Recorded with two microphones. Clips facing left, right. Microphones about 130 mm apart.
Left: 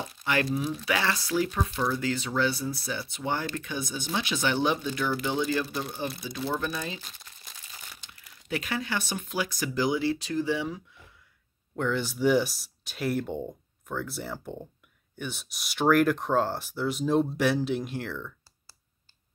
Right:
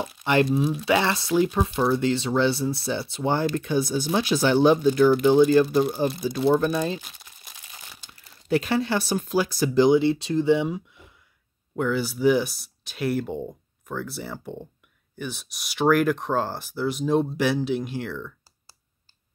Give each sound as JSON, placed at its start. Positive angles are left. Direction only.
{"t": 0.2, "sound": "speech", "side_deg": -25}
{"t": 7.0, "sound": "crumpling", "side_deg": -10}
{"t": 8.0, "sound": "speech", "side_deg": -30}
{"t": 11.7, "sound": "speech", "side_deg": -5}